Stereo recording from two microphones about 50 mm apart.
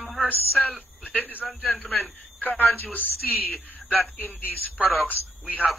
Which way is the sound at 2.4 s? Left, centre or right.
Left.